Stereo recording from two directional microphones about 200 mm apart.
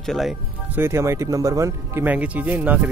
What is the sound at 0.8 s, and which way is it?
Speech, 15° right (ahead or behind).